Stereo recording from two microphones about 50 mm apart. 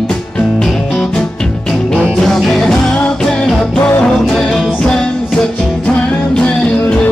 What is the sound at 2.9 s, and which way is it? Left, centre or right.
Music, left.